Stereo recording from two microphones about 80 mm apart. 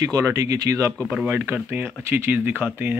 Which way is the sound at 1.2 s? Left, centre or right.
Right.